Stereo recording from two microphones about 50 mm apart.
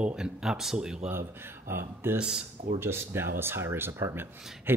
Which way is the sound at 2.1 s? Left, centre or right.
Centre.